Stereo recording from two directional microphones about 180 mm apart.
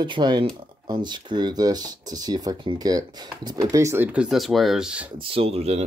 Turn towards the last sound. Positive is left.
turn(degrees=-35)  # may be behind; listen again after turning